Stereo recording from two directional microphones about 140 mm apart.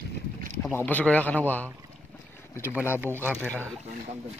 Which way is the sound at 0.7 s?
10° left (ahead or behind).